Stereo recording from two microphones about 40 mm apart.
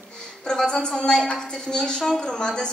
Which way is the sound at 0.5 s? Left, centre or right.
Centre.